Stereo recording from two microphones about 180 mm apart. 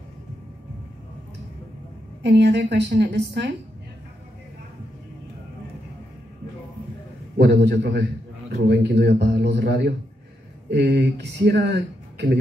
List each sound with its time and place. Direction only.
2.2 s speech: 70° right (ahead or behind)
7.3 s speech: 70° right (ahead or behind)